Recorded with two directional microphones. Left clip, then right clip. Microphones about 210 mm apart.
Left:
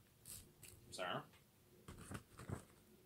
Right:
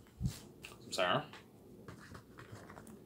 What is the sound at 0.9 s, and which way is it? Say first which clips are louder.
Speech: right 12 dB; 25° right (ahead or behind).